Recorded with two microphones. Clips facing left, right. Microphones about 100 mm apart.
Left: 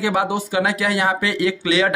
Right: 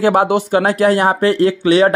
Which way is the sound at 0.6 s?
45° right (ahead or behind).